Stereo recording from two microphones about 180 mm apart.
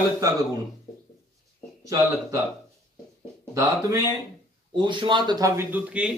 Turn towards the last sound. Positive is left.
turn(degrees=-5)  # may be behind; listen again after turning